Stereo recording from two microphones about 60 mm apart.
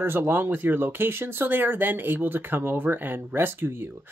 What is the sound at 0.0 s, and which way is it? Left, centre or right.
Speech, right.